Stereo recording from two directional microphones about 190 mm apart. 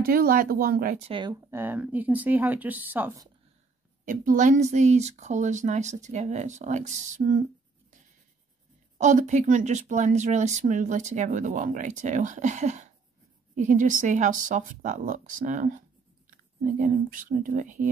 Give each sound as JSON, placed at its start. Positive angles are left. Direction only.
{"t": 0.0, "sound": "speech", "side_deg": -50}
{"t": 1.2, "sound": "speech", "side_deg": -15}
{"t": 4.0, "sound": "speech", "side_deg": -45}
{"t": 8.9, "sound": "speech", "side_deg": -40}